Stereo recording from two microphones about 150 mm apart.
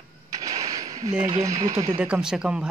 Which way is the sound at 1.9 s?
10° right (ahead or behind).